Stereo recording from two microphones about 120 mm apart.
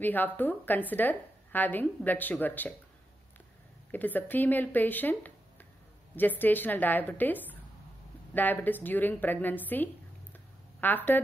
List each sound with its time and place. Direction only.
0.0 s a woman's voice: 15° left (ahead or behind)
3.9 s a woman's voice: 15° left (ahead or behind)